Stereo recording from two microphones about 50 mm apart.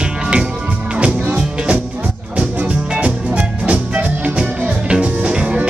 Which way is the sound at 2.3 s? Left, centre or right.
Right.